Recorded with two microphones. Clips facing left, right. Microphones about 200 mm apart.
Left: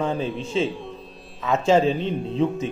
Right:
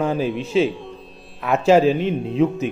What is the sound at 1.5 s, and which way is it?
Speech, 10° right (ahead or behind).